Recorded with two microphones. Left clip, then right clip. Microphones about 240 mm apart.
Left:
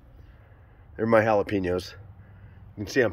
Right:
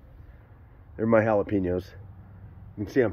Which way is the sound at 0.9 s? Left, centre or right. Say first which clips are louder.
Left 1 dB; centre.